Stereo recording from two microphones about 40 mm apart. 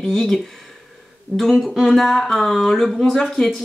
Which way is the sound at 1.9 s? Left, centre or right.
Centre.